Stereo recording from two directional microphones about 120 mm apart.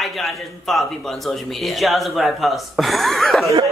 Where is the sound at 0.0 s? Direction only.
Centre (ahead or behind).